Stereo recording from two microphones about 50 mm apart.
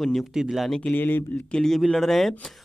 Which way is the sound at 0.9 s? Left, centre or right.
Left.